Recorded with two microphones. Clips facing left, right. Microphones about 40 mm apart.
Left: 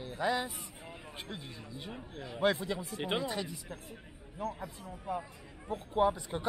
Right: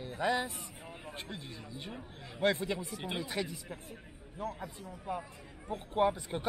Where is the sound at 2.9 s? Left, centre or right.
Left.